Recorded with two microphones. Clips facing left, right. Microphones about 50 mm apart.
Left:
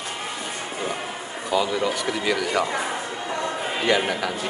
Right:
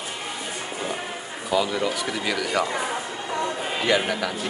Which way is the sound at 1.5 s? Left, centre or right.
Centre.